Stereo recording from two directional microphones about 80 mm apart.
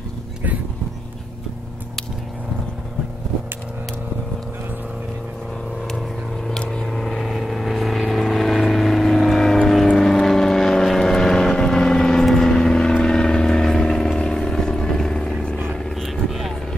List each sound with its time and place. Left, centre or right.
6.6 s vehicle: centre